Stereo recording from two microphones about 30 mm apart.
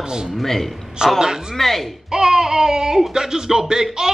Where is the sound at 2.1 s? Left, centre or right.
Centre.